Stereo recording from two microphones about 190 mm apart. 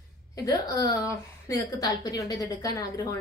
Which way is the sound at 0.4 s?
20° left (ahead or behind).